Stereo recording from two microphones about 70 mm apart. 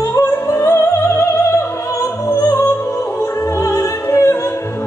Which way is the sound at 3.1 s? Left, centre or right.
Left.